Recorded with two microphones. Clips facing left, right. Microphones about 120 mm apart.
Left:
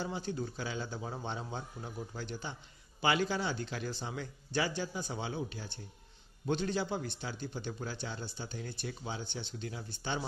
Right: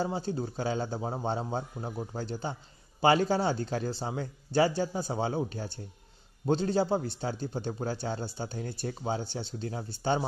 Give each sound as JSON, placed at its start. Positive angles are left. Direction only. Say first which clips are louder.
{"t": 0.0, "sound": "a man's voice", "louder": "right 6 dB", "side_deg": -40}